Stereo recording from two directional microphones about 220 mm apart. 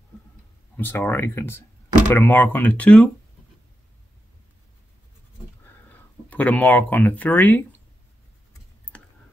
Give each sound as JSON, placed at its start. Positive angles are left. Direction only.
{"t": 0.7, "sound": "speech", "side_deg": 10}
{"t": 5.7, "sound": "speech", "side_deg": 10}
{"t": 8.9, "sound": "a sound", "side_deg": 5}